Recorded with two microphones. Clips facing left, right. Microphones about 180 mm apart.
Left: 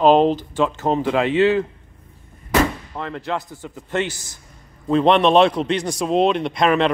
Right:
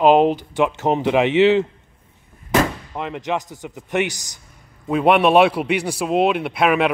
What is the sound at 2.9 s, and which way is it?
A man's voice, 15° right (ahead or behind).